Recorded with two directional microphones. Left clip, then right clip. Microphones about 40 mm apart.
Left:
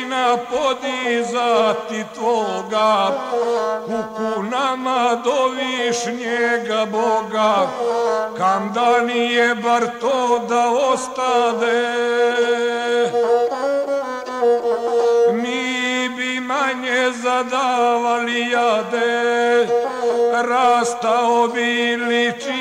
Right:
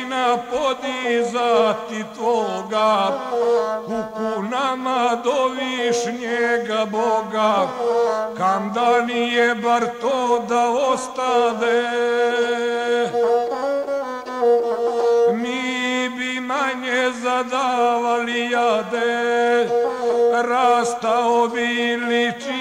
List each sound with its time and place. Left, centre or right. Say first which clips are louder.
0.1 s music: left 2 dB; right
9.4 s music: even; right; by 13.3 s centre
13.3 s music: left 2 dB; right
15.0 s music: left 2 dB; right
15.8 s mantra: even; centre
16.5 s a sound: left 2 dB; right
17.3 s a sound: left 2 dB; right
18.1 s music: left 2 dB; right